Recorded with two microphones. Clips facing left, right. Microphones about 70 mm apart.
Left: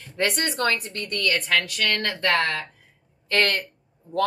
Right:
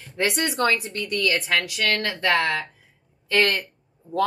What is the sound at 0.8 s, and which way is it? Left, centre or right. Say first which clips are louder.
Speech: right 2 dB; left.